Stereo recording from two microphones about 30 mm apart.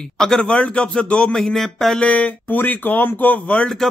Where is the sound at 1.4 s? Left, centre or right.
Centre.